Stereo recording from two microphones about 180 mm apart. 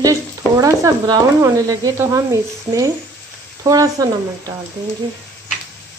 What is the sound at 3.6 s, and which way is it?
Speech, 20° right (ahead or behind).